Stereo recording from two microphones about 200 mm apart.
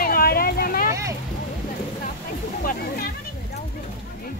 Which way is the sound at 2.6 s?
50° left (ahead or behind).